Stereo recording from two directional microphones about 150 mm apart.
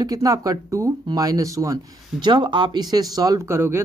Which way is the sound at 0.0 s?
25° right (ahead or behind).